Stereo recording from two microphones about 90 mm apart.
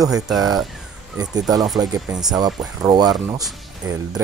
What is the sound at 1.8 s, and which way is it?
Speech, 45° right (ahead or behind).